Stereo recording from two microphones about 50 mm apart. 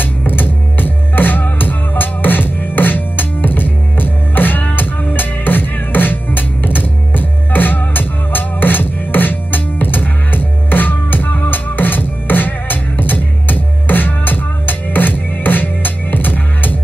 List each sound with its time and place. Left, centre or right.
0.3 s music: left